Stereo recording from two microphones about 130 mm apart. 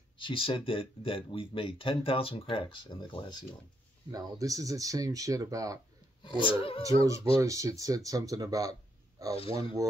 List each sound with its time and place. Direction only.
0.2 s speech: 40° left (ahead or behind)
4.1 s speech: 25° right (ahead or behind)
6.2 s speech: 40° left (ahead or behind)
6.8 s speech: 25° right (ahead or behind)